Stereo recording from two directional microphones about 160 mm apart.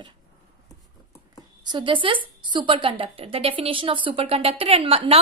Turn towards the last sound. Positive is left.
turn(degrees=-35)  # may be behind; listen again after turning